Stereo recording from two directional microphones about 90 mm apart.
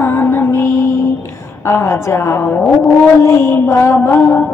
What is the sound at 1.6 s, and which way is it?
A woman's voice, 30° left (ahead or behind).